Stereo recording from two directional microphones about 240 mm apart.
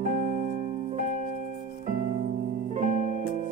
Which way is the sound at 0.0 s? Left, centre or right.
Right.